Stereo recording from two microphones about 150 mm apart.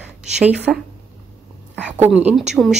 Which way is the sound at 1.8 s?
10° right (ahead or behind).